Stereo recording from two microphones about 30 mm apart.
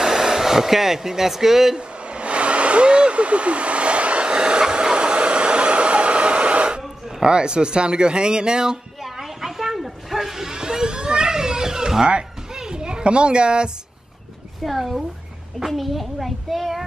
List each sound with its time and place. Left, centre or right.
0.0 s hair dryer: centre
1.8 s vehicle: right
7.2 s speech: right
9.0 s a sound: centre
9.8 s snake: centre
10.1 s a sound: centre
12.5 s children playing: right
14.6 s a child's voice: centre